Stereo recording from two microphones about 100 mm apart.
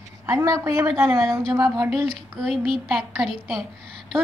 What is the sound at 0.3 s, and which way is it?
Speech, 30° right (ahead or behind).